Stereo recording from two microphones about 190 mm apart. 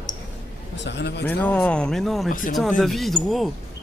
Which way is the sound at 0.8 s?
65° left (ahead or behind).